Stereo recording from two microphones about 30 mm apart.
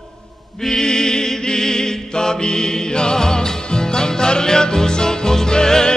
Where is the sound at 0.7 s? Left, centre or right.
Left.